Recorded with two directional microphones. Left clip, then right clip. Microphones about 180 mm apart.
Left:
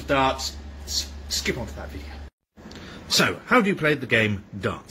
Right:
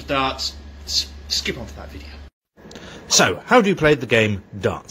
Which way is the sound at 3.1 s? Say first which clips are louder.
Right 5 dB; 25° right (ahead or behind).